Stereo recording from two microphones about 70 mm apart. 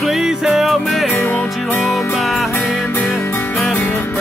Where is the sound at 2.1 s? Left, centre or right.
Centre.